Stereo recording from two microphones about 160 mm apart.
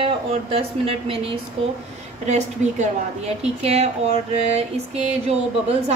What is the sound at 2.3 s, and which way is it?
A woman's voice, 45° right (ahead or behind).